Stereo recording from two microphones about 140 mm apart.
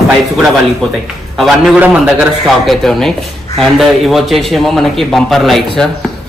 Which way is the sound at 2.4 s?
Centre (ahead or behind).